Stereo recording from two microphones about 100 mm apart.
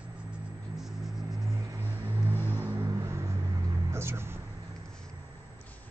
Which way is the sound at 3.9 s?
25° right (ahead or behind).